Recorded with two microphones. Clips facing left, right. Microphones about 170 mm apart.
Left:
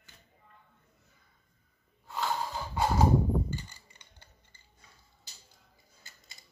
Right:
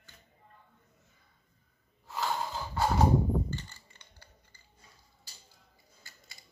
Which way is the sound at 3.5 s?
15° left (ahead or behind).